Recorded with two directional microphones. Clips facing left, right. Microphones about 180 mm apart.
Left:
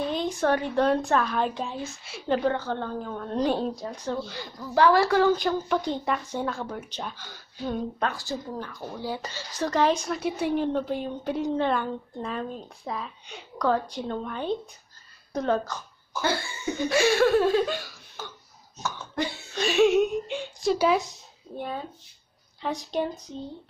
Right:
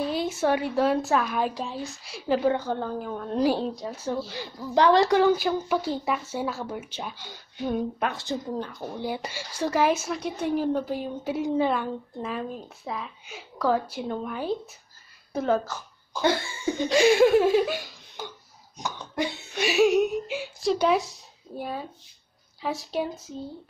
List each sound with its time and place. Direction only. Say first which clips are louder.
0.0 s speech: even; 5° right (ahead or behind)
4.3 s speech: right 2 dB; 20° right (ahead or behind)
5.4 s speech: even; 5° right (ahead or behind)
10.6 s a woman's voice: even; 5° right (ahead or behind)